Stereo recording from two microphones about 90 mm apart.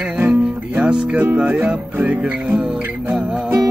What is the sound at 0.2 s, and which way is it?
Music, 15° right (ahead or behind).